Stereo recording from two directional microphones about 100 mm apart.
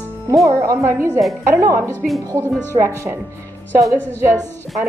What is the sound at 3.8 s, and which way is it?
Speech, 30° right (ahead or behind).